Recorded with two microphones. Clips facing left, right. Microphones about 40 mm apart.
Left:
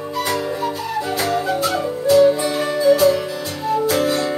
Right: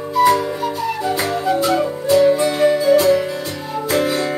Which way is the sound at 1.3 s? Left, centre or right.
Centre.